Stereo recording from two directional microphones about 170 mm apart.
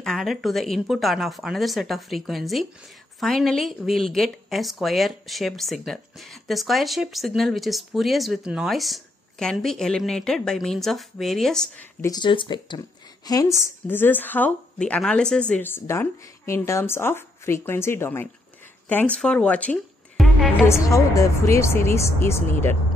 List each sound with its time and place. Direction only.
0.0 s speech: centre (ahead or behind)
12.0 s speech: 25° left (ahead or behind); by 20.5 s 5° left (ahead or behind)
20.6 s speech: 15° left (ahead or behind)